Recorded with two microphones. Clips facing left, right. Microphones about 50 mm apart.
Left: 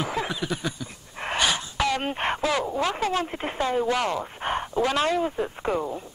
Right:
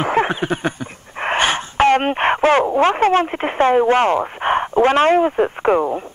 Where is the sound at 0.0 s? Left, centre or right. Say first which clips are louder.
Right 10 dB; right.